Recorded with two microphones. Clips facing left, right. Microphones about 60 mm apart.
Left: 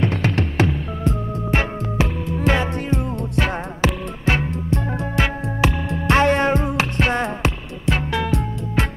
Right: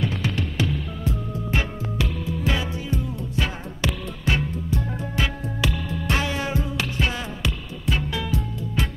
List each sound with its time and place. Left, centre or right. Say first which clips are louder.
0.0 s music: left 5 dB; left